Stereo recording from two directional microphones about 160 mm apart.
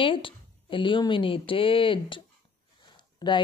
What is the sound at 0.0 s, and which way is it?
A woman's voice, 30° left (ahead or behind).